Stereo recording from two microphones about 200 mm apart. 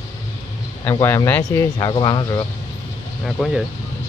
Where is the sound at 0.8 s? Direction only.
10° left (ahead or behind).